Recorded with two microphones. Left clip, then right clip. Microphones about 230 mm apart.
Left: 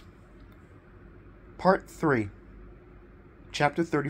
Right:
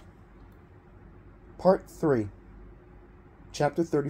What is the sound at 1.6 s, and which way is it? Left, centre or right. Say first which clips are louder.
Speech: right 1 dB; left.